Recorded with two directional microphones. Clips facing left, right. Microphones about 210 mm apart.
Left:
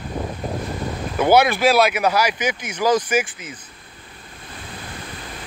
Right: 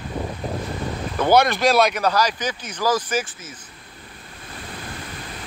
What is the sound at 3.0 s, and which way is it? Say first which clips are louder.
Speech: left 4 dB; 10° left (ahead or behind).